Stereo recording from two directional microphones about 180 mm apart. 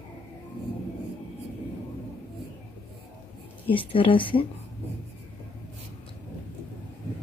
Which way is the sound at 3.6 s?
30° left (ahead or behind).